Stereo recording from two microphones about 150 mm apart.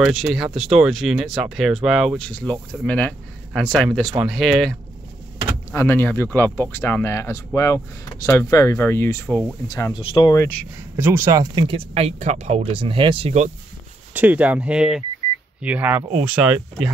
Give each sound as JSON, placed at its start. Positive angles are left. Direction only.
{"t": 0.0, "sound": "speech", "side_deg": 0}
{"t": 5.7, "sound": "speech", "side_deg": 15}
{"t": 9.9, "sound": "speech", "side_deg": 35}
{"t": 10.3, "sound": "speech", "side_deg": 20}
{"t": 11.0, "sound": "speech", "side_deg": -15}
{"t": 11.6, "sound": "speech", "side_deg": -40}
{"t": 14.1, "sound": "speech", "side_deg": -10}